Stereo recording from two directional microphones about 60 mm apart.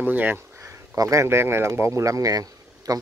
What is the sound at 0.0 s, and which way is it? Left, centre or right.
Speech, right.